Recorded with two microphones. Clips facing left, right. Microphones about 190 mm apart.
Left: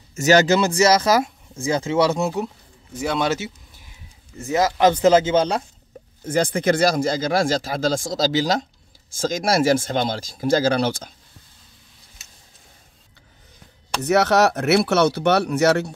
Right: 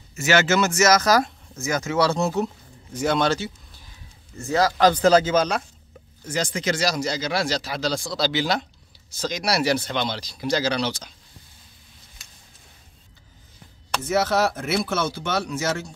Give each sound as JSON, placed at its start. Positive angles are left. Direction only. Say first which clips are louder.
{"t": 0.1, "sound": "speech", "louder": "left 5 dB", "side_deg": 40}
{"t": 2.2, "sound": "speech", "louder": "even", "side_deg": 10}
{"t": 4.4, "sound": "speech", "louder": "left 1 dB", "side_deg": 20}
{"t": 6.2, "sound": "speech", "louder": "left 6 dB", "side_deg": 55}
{"t": 14.0, "sound": "speech", "louder": "left 5 dB", "side_deg": 70}